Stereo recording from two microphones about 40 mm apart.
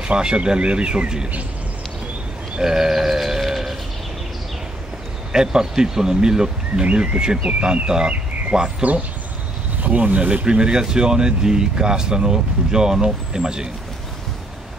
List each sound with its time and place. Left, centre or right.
0.0 s speech: right
2.6 s speech: centre
3.4 s a sound: centre
5.3 s speech: centre
8.1 s a sound: right
9.8 s speech: right
10.4 s speech: right